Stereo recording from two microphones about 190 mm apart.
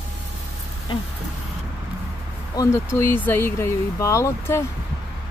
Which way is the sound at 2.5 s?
20° left (ahead or behind).